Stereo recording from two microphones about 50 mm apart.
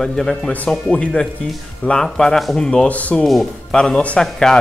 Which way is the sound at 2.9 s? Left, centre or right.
Left.